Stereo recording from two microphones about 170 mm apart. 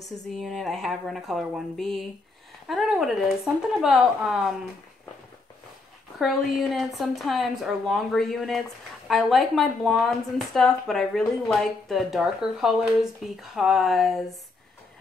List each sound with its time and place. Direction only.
0.4 s a woman's voice: centre (ahead or behind)
6.1 s a woman's voice: centre (ahead or behind)